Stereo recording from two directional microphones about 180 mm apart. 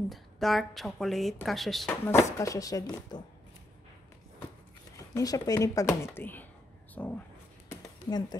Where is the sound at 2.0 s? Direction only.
15° left (ahead or behind).